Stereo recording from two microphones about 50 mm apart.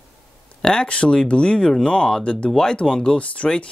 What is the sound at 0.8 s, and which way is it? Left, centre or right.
Speech, left.